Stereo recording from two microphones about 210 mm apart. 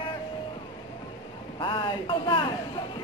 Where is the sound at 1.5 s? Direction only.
25° left (ahead or behind).